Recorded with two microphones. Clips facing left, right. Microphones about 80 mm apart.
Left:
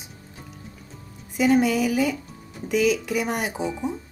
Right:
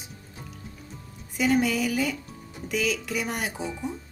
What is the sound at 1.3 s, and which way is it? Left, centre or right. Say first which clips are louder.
Speech: left 4 dB; centre.